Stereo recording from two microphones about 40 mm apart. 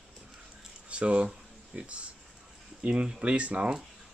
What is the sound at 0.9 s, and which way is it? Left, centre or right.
Speech, right.